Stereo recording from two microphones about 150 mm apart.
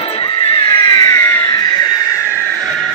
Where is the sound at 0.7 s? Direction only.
25° left (ahead or behind).